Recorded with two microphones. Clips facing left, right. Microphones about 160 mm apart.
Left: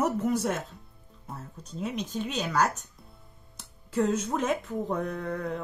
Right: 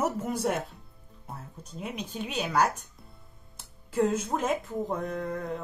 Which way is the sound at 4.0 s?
5° right (ahead or behind).